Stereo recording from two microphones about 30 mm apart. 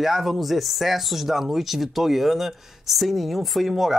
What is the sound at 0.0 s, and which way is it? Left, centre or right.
Speech, centre.